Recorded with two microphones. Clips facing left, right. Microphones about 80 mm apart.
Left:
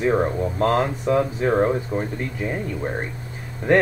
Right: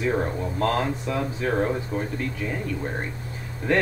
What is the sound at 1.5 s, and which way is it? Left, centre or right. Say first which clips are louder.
Speech: left 3 dB; left.